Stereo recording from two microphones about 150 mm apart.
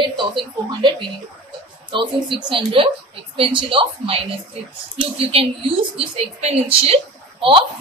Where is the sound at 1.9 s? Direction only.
35° right (ahead or behind).